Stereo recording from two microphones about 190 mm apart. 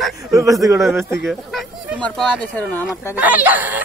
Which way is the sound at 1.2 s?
Centre (ahead or behind).